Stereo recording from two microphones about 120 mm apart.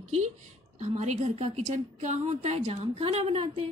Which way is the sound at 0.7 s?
90° right.